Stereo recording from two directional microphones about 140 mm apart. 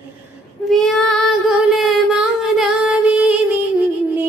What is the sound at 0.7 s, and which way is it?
Child singing, centre (ahead or behind).